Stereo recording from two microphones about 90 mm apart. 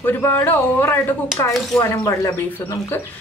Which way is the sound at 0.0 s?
20° left (ahead or behind).